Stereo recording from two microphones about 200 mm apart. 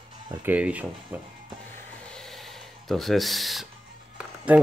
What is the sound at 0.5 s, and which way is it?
Speech, 5° right (ahead or behind).